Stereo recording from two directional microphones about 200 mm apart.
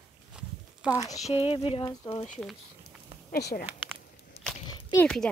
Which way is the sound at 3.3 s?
50° left (ahead or behind).